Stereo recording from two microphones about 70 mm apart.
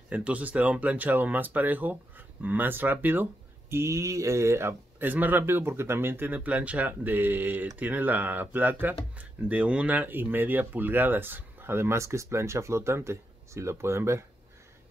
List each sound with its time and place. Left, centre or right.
0.1 s speech: right
3.7 s speech: right